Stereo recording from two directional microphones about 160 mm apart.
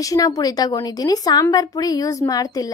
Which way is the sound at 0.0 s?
20° left (ahead or behind).